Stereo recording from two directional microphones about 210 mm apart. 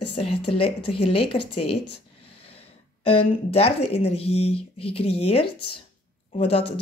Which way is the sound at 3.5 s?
30° left (ahead or behind).